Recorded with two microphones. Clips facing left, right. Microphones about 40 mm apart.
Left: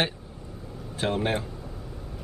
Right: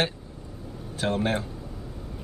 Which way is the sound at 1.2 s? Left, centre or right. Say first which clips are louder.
Right 1 dB; centre.